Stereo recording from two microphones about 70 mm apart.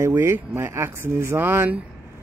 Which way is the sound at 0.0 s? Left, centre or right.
Right.